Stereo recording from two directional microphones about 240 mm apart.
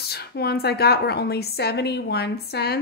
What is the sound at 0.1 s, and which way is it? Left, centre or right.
A woman's voice, left.